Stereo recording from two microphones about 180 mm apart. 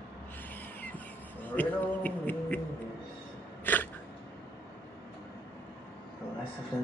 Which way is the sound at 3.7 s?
10° left (ahead or behind).